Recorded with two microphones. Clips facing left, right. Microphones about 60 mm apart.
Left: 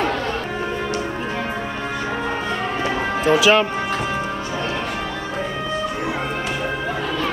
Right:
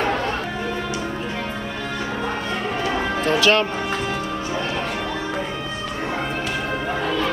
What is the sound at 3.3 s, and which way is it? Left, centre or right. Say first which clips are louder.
Speech: left 3 dB; centre.